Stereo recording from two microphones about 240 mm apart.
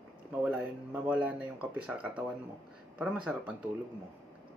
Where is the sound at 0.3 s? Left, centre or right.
Centre.